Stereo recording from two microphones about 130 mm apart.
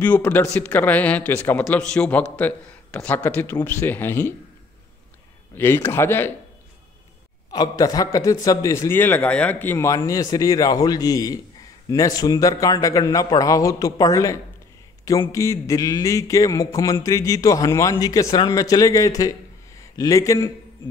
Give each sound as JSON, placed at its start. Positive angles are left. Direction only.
{"t": 0.0, "sound": "speech", "side_deg": 15}
{"t": 5.6, "sound": "speech", "side_deg": 15}
{"t": 7.5, "sound": "a man's voice", "side_deg": 30}